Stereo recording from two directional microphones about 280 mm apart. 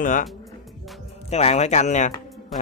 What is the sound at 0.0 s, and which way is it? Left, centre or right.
Speech, left.